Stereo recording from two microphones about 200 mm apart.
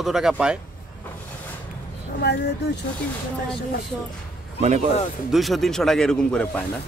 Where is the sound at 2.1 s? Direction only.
55° left (ahead or behind).